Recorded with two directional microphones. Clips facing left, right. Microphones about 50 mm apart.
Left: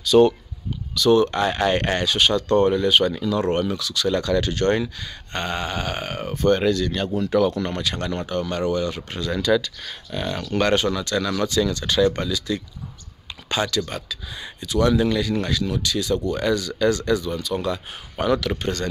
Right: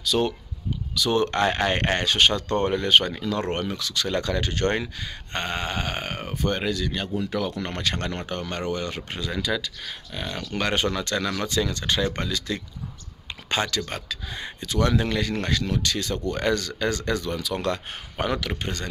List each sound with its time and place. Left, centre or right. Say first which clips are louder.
0.0 s speech: left 9 dB; centre
1.1 s speech: left 2 dB; right
6.4 s speech: left 7 dB; centre
7.7 s speech: left 2 dB; right
9.1 s speech: left 7 dB; centre
10.8 s speech: left 2 dB; right
12.1 s speech: left 4 dB; right
17.2 s speech: left 2 dB; right
18.1 s speech: left 5 dB; right